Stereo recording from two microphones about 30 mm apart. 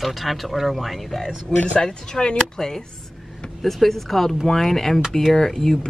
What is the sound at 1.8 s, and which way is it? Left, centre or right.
Speech, left.